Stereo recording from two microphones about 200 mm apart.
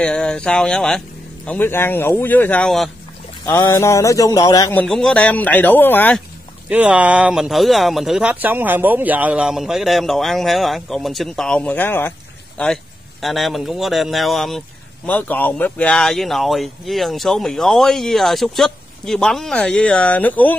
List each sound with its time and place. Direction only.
0.0 s speech: 5° left (ahead or behind)
3.4 s speech: 15° left (ahead or behind)
4.8 s speech: 5° left (ahead or behind)
6.7 s speech: 5° right (ahead or behind); by 20.5 s 10° left (ahead or behind)